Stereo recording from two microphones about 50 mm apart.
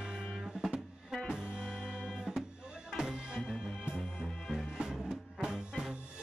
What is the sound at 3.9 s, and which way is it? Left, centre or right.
Music, centre.